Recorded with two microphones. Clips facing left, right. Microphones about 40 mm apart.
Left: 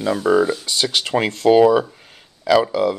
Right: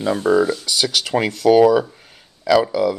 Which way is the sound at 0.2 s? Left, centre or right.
Centre.